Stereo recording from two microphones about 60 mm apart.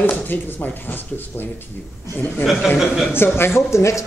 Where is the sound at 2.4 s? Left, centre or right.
Centre.